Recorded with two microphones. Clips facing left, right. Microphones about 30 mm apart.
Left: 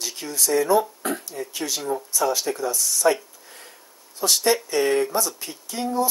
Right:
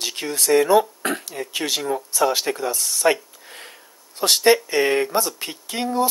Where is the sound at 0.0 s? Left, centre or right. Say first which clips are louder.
Right 3 dB; right.